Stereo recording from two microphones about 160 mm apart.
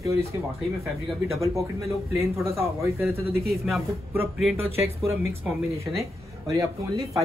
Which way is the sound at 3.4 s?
Centre (ahead or behind).